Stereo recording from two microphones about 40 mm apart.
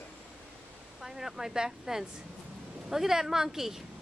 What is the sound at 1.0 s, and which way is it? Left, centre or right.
Speech, centre.